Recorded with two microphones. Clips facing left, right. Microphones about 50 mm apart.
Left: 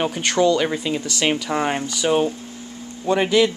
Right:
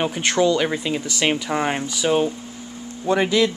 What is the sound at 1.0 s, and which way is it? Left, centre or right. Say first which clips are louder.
Speech: even; centre.